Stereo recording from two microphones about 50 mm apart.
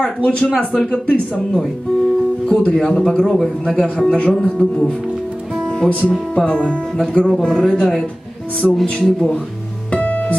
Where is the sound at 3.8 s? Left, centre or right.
Left.